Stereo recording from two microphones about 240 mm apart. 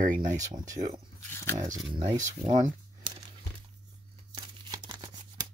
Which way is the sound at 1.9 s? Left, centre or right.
Centre.